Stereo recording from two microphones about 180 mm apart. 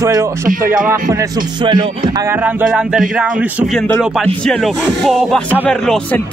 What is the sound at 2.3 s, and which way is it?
Music, 10° right (ahead or behind).